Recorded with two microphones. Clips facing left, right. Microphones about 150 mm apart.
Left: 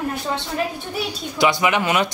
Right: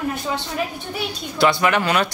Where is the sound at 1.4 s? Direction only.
15° left (ahead or behind).